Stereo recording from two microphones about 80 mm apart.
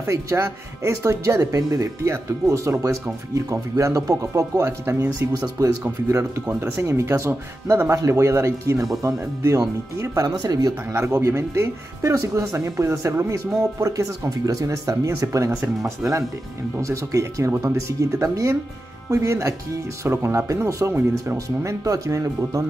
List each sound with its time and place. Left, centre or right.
0.0 s speech: right
10.4 s speech: right
11.2 s speech: right